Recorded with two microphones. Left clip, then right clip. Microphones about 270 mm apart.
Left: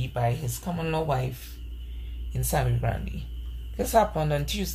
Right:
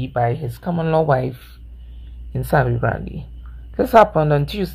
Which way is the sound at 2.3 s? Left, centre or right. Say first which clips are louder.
Right 10 dB; right.